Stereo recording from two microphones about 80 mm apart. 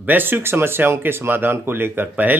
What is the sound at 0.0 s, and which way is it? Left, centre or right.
Speech, right.